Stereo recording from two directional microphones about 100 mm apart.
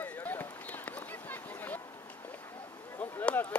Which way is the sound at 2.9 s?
20° left (ahead or behind).